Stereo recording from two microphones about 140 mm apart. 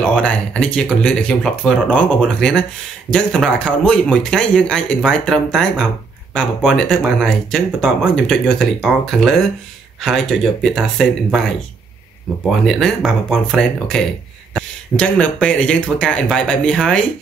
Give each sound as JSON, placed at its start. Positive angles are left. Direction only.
{"t": 0.0, "sound": "speech", "side_deg": 10}